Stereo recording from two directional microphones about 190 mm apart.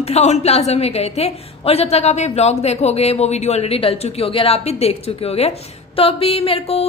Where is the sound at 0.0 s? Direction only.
35° left (ahead or behind).